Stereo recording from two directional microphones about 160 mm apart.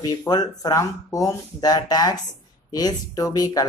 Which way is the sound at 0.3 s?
25° left (ahead or behind).